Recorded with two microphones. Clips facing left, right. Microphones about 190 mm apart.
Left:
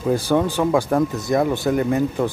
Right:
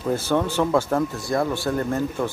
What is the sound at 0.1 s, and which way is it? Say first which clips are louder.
Speech: left 3 dB; 15° left (ahead or behind).